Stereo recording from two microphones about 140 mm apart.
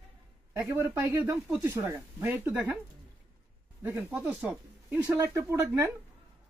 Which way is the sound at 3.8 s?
15° right (ahead or behind).